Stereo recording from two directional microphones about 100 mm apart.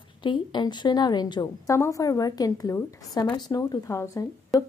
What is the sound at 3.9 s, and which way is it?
Speech, 30° left (ahead or behind).